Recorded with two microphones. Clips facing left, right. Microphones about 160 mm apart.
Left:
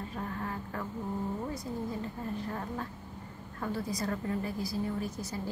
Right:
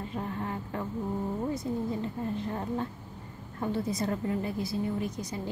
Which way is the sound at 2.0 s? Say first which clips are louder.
Right 4 dB; 25° right (ahead or behind).